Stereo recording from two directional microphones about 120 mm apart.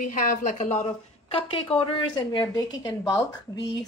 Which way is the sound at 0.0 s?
90° left.